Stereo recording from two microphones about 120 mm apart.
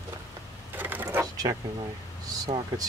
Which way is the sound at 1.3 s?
35° right (ahead or behind).